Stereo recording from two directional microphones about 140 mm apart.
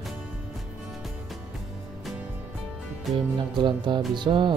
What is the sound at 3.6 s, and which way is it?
Speech, 35° right (ahead or behind).